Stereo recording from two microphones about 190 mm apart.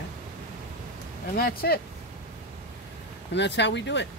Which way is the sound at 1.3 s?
55° left (ahead or behind).